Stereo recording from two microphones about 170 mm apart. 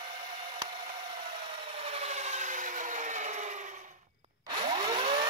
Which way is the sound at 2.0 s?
40° right (ahead or behind).